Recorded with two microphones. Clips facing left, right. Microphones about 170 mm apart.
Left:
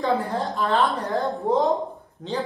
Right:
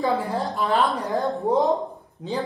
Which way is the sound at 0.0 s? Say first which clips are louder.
Even; centre (ahead or behind).